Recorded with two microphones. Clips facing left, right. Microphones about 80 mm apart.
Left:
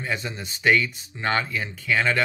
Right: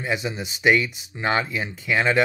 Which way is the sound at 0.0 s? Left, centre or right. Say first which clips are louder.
Right 3 dB; centre.